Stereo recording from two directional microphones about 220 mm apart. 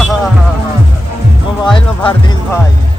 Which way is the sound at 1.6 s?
20° left (ahead or behind).